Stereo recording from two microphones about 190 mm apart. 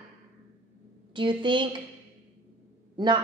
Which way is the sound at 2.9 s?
25° right (ahead or behind).